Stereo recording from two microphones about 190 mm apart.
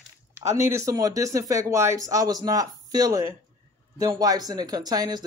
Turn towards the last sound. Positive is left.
turn(degrees=-20)  # may be behind; listen again after turning